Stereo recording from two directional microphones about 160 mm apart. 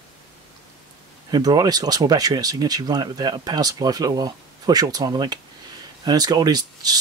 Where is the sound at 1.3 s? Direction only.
25° right (ahead or behind).